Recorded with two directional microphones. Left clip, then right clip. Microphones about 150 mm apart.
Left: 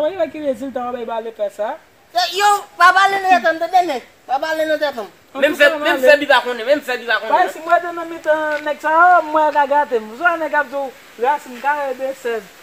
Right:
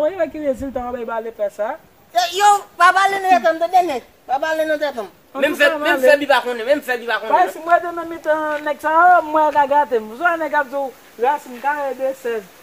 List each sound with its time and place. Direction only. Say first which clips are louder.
0.0 s a woman's voice: even; 10° left (ahead or behind)
2.1 s a man's voice: right 1 dB; 10° right (ahead or behind)
6.0 s speech: left 2 dB; 20° right (ahead or behind)
7.2 s speech: right 1 dB; centre (ahead or behind)